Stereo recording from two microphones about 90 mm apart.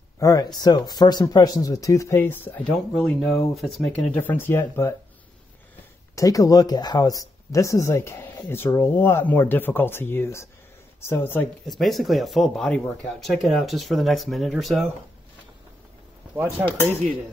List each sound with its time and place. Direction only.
0.2 s speech: 45° left (ahead or behind); by 2.6 s 20° left (ahead or behind)
2.6 s speech: 5° left (ahead or behind)
4.1 s speech: 20° left (ahead or behind)
6.1 s speech: 40° left (ahead or behind)
11.8 s speech: centre (ahead or behind)
16.6 s speech: 15° right (ahead or behind)